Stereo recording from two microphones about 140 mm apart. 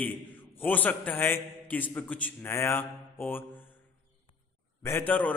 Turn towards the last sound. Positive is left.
turn(degrees=10)  # may be behind; listen again after turning